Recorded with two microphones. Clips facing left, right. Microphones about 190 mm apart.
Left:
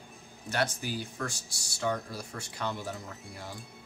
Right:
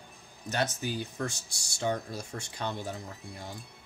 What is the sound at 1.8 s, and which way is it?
Speech, 25° right (ahead or behind).